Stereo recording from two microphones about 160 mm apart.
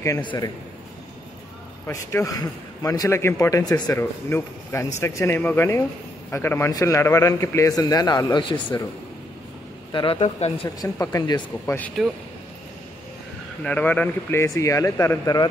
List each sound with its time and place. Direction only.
0.2 s a man's voice: 30° left (ahead or behind)
1.9 s a man's voice: 20° left (ahead or behind)
9.9 s speech: 35° left (ahead or behind)
10.8 s a man's voice: 20° left (ahead or behind)
12.0 s a man's voice: centre (ahead or behind)
13.7 s speech: 10° left (ahead or behind)